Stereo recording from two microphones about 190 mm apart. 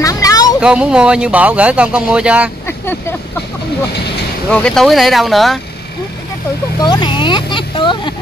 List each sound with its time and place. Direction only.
0.0 s vehicle: 20° left (ahead or behind)
0.6 s speech: 5° right (ahead or behind)
2.6 s vehicle: 10° left (ahead or behind)
4.5 s speech: 5° left (ahead or behind)
6.8 s speech: 25° left (ahead or behind)